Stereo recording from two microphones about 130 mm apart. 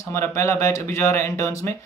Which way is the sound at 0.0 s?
20° left (ahead or behind).